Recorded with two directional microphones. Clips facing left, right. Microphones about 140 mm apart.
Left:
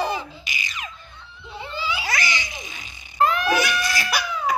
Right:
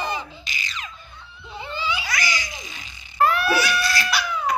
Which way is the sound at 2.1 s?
25° left (ahead or behind).